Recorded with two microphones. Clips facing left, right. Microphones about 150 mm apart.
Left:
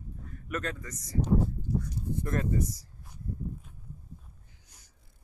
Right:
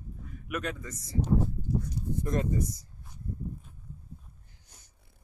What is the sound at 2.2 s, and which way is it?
Speech, 20° right (ahead or behind).